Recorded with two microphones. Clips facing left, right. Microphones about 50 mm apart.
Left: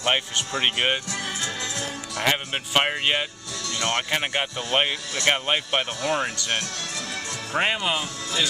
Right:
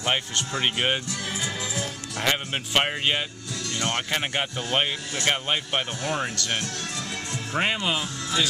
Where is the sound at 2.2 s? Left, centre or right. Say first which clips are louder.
Left 1 dB; centre.